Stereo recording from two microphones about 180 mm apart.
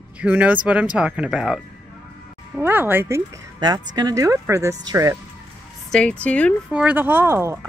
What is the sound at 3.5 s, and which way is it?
Speech, 20° right (ahead or behind).